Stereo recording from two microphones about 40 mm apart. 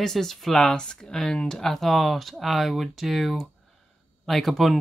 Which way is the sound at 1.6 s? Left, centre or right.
Centre.